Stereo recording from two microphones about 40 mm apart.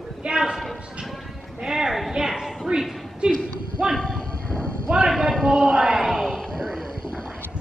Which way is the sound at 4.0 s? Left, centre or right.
Centre.